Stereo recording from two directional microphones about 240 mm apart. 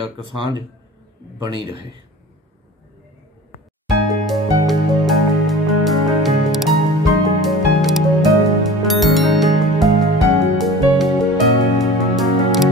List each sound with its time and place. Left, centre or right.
0.4 s a man's voice: centre
3.8 s music: centre